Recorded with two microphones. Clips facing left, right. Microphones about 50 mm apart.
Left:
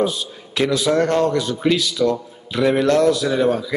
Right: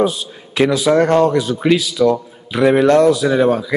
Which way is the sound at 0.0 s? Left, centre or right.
Centre.